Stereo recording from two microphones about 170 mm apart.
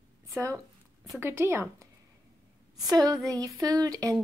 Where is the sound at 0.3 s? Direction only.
15° right (ahead or behind).